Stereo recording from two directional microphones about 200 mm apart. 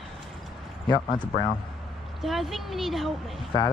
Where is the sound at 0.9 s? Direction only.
20° left (ahead or behind).